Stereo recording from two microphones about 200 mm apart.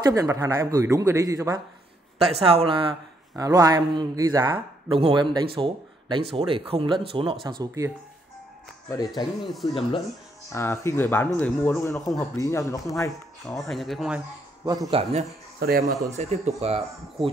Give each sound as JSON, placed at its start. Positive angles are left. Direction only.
{"t": 0.0, "sound": "a man's voice", "side_deg": -15}
{"t": 2.1, "sound": "a man's voice", "side_deg": -30}
{"t": 8.8, "sound": "speech", "side_deg": 20}
{"t": 9.4, "sound": "speech", "side_deg": 0}
{"t": 10.5, "sound": "speech", "side_deg": 15}
{"t": 12.4, "sound": "speech", "side_deg": 15}
{"t": 13.5, "sound": "speech", "side_deg": 0}
{"t": 14.6, "sound": "a man's voice", "side_deg": -20}